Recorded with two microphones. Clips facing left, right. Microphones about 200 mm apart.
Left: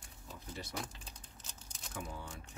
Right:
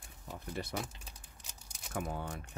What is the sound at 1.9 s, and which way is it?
Speech, 65° right (ahead or behind).